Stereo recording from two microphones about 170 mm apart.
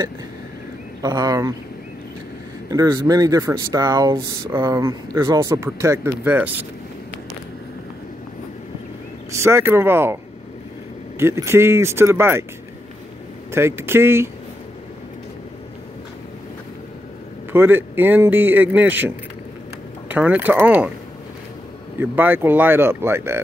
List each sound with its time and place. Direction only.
1.0 s speech: 20° right (ahead or behind)
2.7 s speech: 20° right (ahead or behind)
9.3 s a man's voice: 15° right (ahead or behind)
11.1 s a man's voice: 15° right (ahead or behind)
13.5 s a man's voice: 15° right (ahead or behind)
17.5 s a man's voice: 10° right (ahead or behind)
22.0 s a man's voice: 10° right (ahead or behind)